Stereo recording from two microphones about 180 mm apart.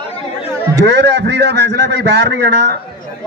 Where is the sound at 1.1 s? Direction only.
70° right (ahead or behind).